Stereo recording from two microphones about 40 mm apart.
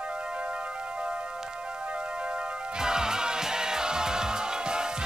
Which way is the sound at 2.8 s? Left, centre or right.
Centre.